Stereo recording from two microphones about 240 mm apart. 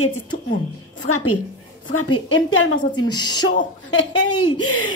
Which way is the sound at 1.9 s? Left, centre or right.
Left.